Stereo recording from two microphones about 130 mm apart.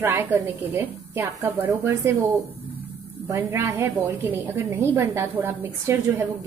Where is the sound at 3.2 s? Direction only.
20° right (ahead or behind).